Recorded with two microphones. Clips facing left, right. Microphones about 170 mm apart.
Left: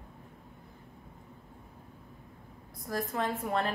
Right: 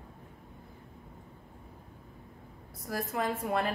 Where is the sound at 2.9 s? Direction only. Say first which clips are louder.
Even; 10° right (ahead or behind).